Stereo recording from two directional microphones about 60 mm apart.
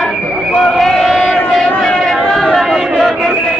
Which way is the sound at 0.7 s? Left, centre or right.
Centre.